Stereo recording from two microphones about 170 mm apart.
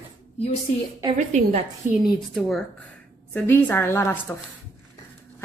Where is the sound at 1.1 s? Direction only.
45° right (ahead or behind).